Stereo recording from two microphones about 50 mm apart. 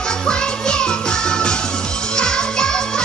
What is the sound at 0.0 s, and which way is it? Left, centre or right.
Music, centre.